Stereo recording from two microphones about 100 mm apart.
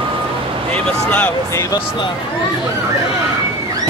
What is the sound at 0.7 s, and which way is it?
Speech, 10° left (ahead or behind).